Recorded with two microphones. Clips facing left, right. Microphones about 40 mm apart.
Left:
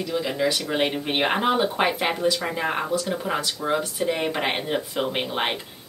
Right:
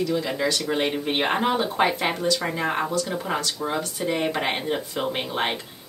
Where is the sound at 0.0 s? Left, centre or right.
Centre.